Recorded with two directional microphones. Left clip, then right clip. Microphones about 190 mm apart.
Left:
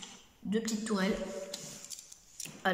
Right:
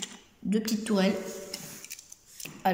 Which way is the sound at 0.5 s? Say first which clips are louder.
Right 4 dB; 10° right (ahead or behind).